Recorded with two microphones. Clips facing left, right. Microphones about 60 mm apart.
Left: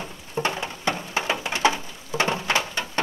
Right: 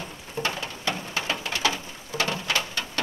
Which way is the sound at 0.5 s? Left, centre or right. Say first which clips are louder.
Left 3 dB; centre.